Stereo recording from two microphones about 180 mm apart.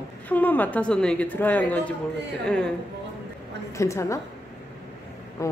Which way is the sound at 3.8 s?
15° left (ahead or behind).